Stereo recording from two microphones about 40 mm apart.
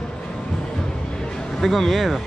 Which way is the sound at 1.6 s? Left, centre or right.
Centre.